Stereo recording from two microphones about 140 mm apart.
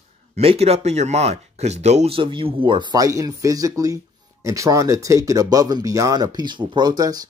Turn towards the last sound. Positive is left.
turn(degrees=-25)  # may be behind; listen again after turning